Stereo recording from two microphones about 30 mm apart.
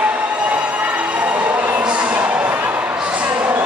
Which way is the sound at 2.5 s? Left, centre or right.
Right.